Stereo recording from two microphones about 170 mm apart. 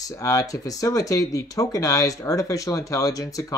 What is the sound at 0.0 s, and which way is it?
Speech, 20° left (ahead or behind).